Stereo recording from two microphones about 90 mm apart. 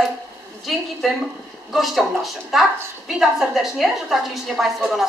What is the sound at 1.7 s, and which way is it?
A woman's voice, centre (ahead or behind).